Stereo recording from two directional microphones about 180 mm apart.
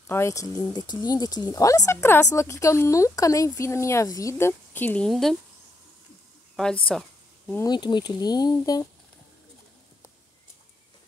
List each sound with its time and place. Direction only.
0.0 s speech: 15° left (ahead or behind)
6.5 s a sound: 5° left (ahead or behind)
7.6 s speech: 25° left (ahead or behind)